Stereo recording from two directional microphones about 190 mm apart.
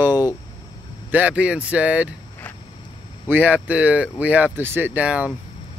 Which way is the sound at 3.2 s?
10° right (ahead or behind).